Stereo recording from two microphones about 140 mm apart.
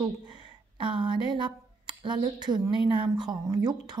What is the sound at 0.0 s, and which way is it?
A woman's voice, 35° right (ahead or behind).